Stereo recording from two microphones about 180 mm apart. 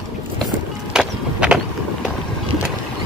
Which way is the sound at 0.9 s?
5° right (ahead or behind).